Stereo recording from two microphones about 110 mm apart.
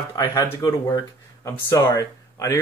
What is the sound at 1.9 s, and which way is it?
Speech, 30° left (ahead or behind).